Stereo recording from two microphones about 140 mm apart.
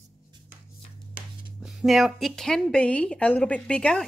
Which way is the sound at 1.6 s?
Centre (ahead or behind).